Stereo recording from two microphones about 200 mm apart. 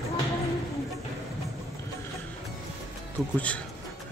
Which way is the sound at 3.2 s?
Centre (ahead or behind).